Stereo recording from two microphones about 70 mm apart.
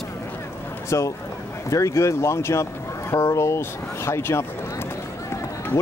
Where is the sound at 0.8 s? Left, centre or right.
Left.